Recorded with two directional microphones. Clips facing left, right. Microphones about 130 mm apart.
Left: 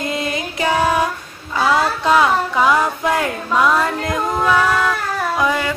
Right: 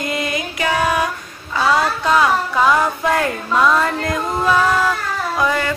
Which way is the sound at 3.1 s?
15° left (ahead or behind).